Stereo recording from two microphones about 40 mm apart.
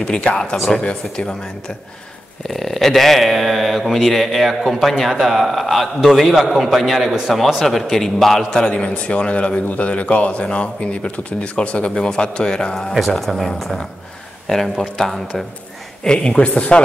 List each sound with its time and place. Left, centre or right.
0.0 s a man's voice: centre
2.4 s speech: centre
7.6 s speech: centre
8.5 s a man's voice: left
11.9 s a man's voice: centre
12.9 s speech: centre
16.0 s a man's voice: left